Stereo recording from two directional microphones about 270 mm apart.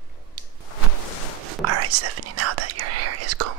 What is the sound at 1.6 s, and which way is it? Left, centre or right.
Whispering, right.